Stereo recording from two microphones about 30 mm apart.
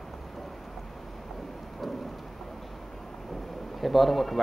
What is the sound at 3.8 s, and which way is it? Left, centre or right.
Speech, centre.